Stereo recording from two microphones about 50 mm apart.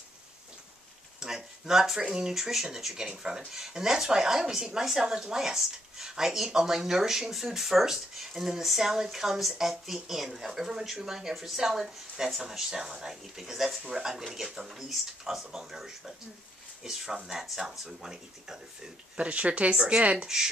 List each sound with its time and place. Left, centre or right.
1.2 s speech: centre
19.1 s speech: right